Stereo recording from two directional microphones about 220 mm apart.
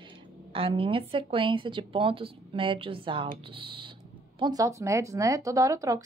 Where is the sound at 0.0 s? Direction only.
20° right (ahead or behind).